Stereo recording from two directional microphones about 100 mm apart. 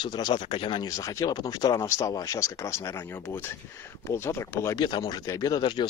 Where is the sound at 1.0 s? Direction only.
35° left (ahead or behind).